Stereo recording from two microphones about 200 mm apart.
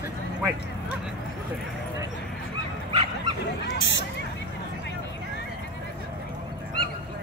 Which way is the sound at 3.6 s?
65° left (ahead or behind).